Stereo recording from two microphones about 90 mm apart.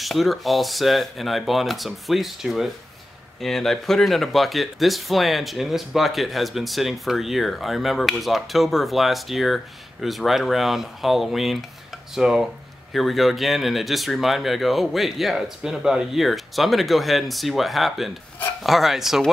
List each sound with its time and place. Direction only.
0.0 s speech: centre (ahead or behind)